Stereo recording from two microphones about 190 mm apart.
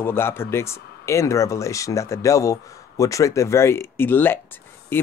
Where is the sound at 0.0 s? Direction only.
10° left (ahead or behind).